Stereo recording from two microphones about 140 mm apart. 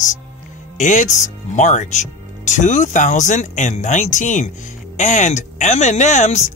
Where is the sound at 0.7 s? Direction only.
60° left (ahead or behind).